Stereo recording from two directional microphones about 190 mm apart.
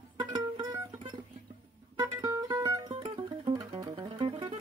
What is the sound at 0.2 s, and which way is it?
Music, 25° right (ahead or behind).